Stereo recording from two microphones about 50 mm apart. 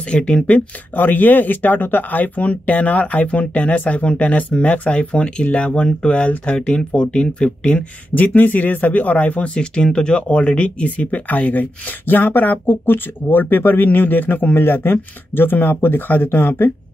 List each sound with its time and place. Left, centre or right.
0.1 s speech: centre
0.9 s speech: left
8.1 s speech: left